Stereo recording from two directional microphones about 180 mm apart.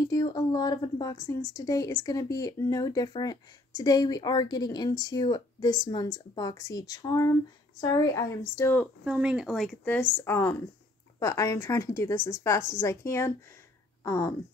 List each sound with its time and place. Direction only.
0.0 s speech: 20° left (ahead or behind)
9.0 s speech: 5° right (ahead or behind); by 14.3 s 15° left (ahead or behind)